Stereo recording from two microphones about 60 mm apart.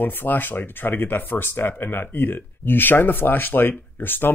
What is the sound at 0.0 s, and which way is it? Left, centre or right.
Speech, left.